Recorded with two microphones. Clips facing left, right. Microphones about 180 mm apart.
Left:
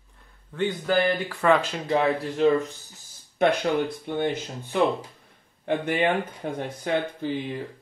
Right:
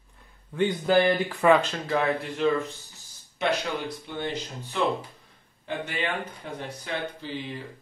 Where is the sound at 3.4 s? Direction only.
55° left (ahead or behind).